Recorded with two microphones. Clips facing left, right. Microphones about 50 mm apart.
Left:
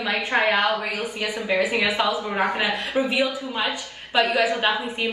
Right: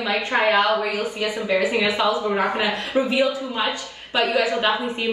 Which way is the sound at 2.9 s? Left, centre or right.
Left.